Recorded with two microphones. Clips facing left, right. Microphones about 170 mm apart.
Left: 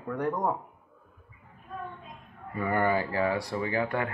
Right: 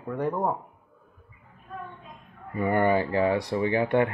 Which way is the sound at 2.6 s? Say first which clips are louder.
Right 4 dB; 20° right (ahead or behind).